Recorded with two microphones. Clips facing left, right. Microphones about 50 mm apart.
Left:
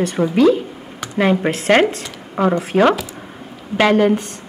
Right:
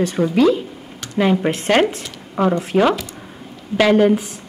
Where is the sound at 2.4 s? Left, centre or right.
Centre.